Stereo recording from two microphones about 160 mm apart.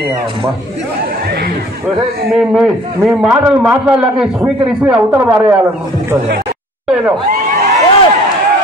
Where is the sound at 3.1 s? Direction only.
5° right (ahead or behind).